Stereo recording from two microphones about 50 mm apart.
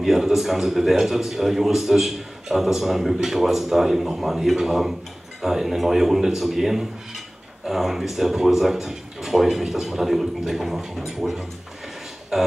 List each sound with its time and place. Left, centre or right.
0.0 s speech: centre